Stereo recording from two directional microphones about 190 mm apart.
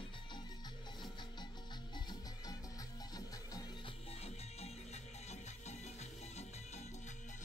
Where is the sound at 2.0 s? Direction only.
20° left (ahead or behind).